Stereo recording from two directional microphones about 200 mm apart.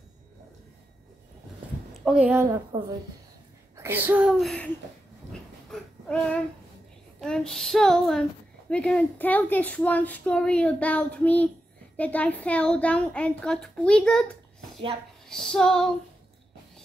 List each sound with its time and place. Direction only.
2.0 s a woman's voice: 5° right (ahead or behind)
3.7 s a woman's voice: 10° right (ahead or behind)
5.7 s baby cry: 5° left (ahead or behind)
7.2 s a woman's voice: 5° left (ahead or behind)